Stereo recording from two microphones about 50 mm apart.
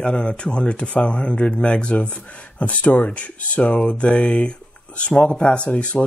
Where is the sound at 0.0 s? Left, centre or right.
Centre.